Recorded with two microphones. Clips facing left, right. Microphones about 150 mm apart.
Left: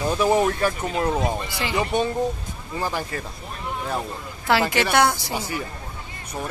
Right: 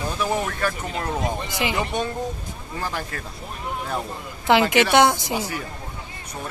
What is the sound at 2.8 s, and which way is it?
Speech, 5° left (ahead or behind).